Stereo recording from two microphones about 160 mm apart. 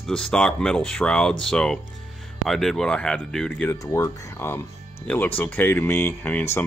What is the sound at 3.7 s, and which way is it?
Speech, 20° left (ahead or behind).